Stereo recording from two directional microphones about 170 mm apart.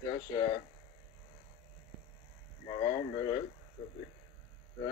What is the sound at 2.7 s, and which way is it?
Speech, 35° left (ahead or behind).